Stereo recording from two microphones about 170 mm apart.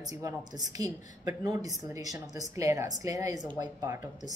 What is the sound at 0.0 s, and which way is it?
A woman's voice, 20° right (ahead or behind).